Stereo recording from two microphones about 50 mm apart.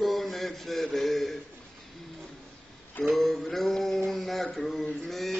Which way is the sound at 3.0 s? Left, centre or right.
Centre.